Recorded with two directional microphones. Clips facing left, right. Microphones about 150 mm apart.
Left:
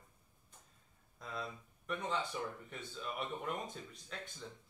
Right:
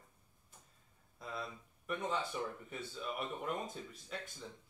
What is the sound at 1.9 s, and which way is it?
Speech, 5° right (ahead or behind).